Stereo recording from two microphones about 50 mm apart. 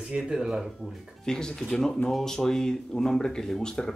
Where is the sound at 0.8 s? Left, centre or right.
Centre.